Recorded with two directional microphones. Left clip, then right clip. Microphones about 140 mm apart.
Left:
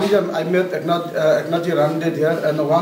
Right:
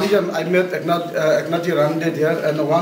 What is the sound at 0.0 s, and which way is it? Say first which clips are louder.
Speech: even; centre (ahead or behind).